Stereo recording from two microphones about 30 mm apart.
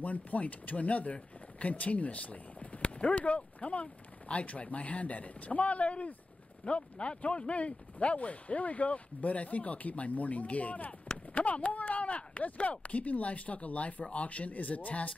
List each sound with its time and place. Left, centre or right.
0.0 s speech: left
11.5 s chop: left
12.7 s speech: left